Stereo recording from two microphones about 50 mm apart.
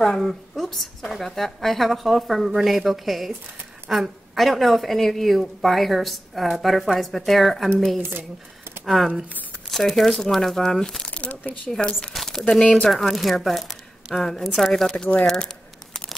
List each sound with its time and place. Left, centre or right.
0.0 s a woman's voice: centre
8.0 s speech: right
8.8 s a woman's voice: centre
11.1 s crumpling: left
11.6 s a woman's voice: centre
14.9 s speech: left
15.2 s a sound: centre